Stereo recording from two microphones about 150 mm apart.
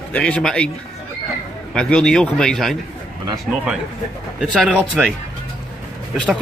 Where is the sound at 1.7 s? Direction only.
5° left (ahead or behind).